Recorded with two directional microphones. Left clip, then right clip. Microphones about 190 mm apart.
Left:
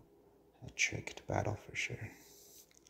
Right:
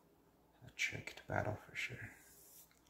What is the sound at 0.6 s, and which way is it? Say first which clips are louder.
Speech: left 5 dB; 25° left (ahead or behind).